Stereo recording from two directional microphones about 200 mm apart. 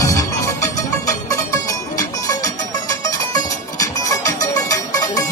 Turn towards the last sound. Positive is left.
turn(degrees=15)  # may be behind; listen again after turning